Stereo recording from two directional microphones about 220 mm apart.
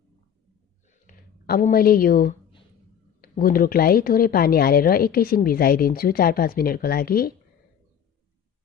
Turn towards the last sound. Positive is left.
turn(degrees=45)  # may be behind; listen again after turning